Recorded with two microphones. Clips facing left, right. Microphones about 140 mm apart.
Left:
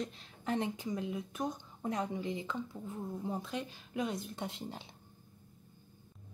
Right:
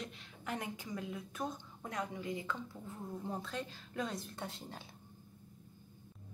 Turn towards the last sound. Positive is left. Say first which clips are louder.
# left 4 dB
turn(degrees=15)  # may be behind; listen again after turning